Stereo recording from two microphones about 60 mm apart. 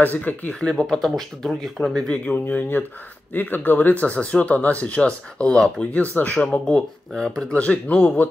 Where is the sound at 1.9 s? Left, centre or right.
Centre.